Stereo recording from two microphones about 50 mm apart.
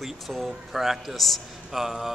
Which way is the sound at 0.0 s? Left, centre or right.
Centre.